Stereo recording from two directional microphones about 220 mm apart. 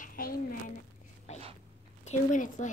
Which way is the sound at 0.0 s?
40° left (ahead or behind).